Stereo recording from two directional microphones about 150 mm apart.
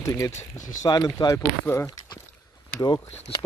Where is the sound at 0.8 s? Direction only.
30° left (ahead or behind).